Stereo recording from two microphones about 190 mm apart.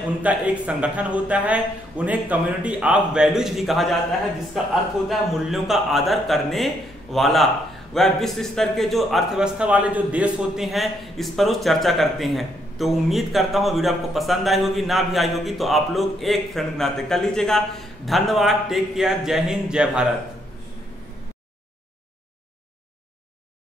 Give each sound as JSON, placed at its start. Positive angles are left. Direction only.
{"t": 0.2, "sound": "a man's voice", "side_deg": -5}